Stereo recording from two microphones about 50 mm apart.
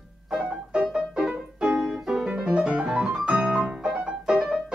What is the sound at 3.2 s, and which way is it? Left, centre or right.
Piano, centre.